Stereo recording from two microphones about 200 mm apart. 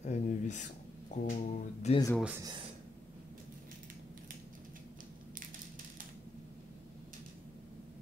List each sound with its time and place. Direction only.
0.0 s speech: 40° left (ahead or behind)
2.1 s speech: 5° right (ahead or behind)